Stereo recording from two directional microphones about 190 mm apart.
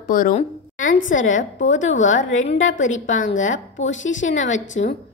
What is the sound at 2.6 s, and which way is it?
Speech, 90° left.